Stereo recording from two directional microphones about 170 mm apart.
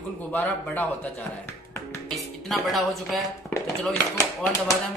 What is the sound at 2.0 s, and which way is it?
Speech, centre (ahead or behind).